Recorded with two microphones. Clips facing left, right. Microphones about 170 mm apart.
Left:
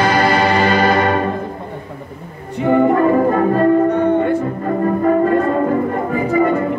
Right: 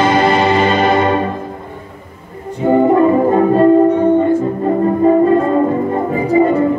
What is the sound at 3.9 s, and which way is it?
Music, 70° left (ahead or behind).